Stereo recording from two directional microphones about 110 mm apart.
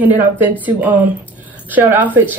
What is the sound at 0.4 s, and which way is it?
Speech, 15° right (ahead or behind).